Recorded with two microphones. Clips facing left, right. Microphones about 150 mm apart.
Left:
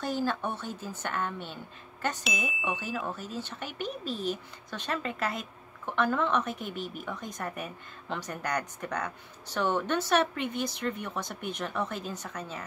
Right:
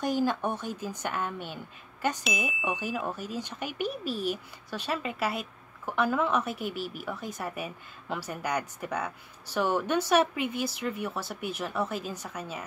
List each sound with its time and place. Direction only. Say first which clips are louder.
0.0 s speech: right 3 dB; 15° right (ahead or behind)
2.2 s speech: right 2 dB; centre (ahead or behind)
2.7 s speech: right 2 dB; 10° right (ahead or behind)